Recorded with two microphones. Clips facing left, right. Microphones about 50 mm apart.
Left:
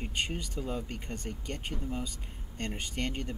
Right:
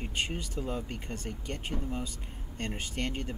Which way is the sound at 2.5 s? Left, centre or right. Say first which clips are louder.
Even; centre.